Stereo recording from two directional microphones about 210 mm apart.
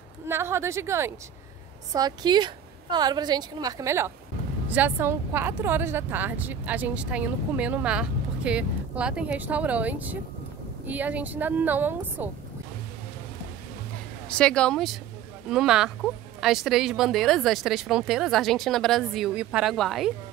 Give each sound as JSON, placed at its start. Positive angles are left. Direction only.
{"t": 0.3, "sound": "a woman's voice", "side_deg": -10}
{"t": 14.3, "sound": "speech", "side_deg": 5}